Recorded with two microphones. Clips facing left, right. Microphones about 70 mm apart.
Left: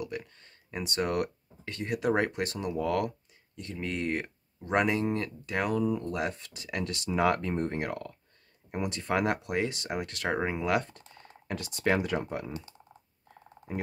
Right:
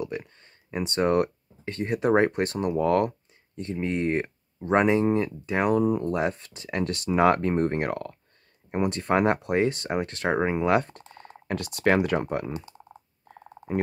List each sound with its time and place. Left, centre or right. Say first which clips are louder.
0.0 s speech: right 4 dB; right
5.9 s speech: right 6 dB; right
10.9 s speech: right 6 dB; right